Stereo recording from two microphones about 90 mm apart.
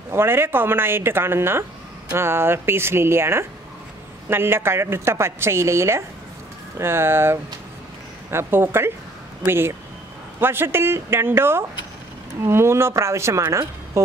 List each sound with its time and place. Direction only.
0.1 s a woman's voice: 25° right (ahead or behind)